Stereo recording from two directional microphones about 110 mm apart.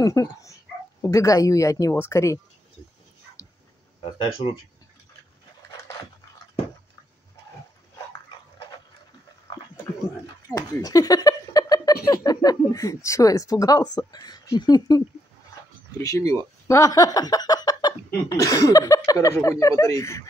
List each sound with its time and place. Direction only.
0.0 s speech: 30° left (ahead or behind)
4.0 s speech: 50° left (ahead or behind)
10.5 s speech: 30° left (ahead or behind)